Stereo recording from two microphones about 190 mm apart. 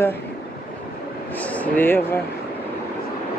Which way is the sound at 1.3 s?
10° left (ahead or behind).